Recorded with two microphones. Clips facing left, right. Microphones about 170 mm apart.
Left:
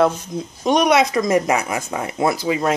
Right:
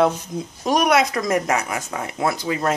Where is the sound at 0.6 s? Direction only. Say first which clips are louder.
Left 2 dB; 5° right (ahead or behind).